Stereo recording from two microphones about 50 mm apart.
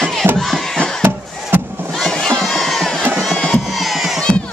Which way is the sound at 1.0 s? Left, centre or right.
Right.